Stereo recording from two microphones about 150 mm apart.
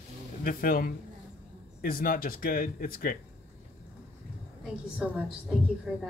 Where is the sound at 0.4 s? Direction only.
70° left (ahead or behind).